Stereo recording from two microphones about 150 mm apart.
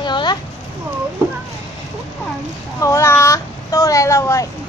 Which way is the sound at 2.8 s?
20° left (ahead or behind).